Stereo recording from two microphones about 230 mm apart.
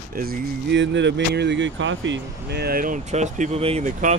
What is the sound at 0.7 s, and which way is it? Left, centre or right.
Speech, right.